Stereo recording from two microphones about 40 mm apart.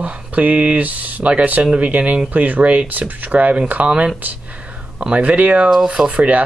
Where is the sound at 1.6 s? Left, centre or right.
Right.